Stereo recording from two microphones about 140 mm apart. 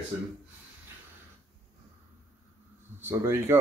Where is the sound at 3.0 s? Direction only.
20° right (ahead or behind).